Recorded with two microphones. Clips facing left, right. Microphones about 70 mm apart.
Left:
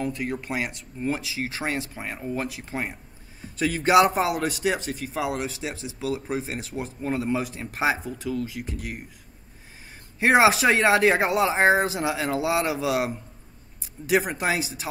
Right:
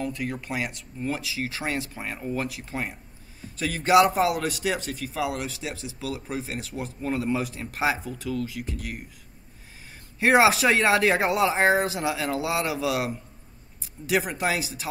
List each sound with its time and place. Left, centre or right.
0.0 s speech: centre
10.2 s speech: centre